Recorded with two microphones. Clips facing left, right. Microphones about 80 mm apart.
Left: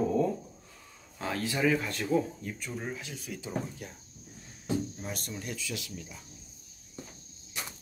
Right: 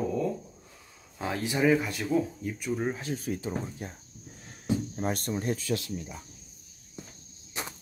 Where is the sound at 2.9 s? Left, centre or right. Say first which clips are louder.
Right 8 dB; right.